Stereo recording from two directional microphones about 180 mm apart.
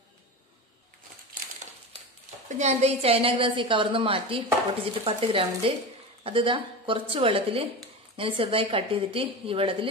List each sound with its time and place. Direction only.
2.4 s a woman's voice: 40° right (ahead or behind)